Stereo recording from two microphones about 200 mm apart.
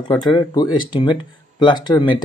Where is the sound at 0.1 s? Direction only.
20° left (ahead or behind).